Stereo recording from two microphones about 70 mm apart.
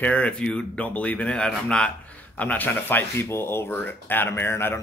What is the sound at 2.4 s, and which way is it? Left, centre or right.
Speech, left.